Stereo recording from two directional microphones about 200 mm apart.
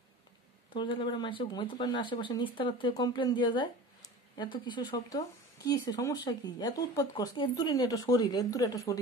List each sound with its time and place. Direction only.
0.7 s speech: 25° left (ahead or behind)